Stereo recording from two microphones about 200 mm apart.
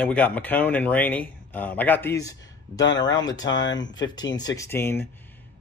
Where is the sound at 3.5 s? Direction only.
65° left (ahead or behind).